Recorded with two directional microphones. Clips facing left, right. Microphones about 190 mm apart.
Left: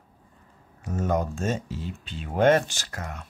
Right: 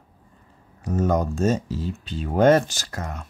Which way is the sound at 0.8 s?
35° right (ahead or behind).